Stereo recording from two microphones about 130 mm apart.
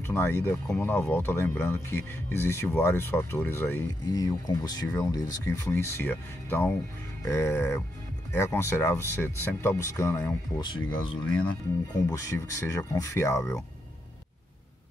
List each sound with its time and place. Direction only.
0.0 s speech: 20° left (ahead or behind)
4.0 s speech: 30° left (ahead or behind)
10.6 s speech: 35° left (ahead or behind)
12.1 s speech: 25° left (ahead or behind)